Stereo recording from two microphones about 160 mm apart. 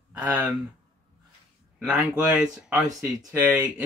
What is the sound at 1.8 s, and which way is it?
Speech, 5° right (ahead or behind).